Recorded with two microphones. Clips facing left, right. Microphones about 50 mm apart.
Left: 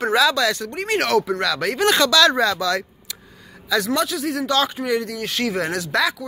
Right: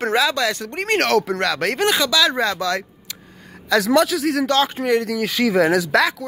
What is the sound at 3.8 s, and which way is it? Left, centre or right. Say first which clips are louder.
Speech: right 8 dB; right.